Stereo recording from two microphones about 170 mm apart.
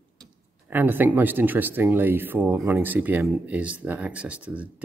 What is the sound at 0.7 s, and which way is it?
Speech, 10° right (ahead or behind).